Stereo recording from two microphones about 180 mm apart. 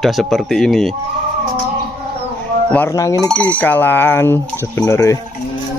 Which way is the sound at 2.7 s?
15° left (ahead or behind).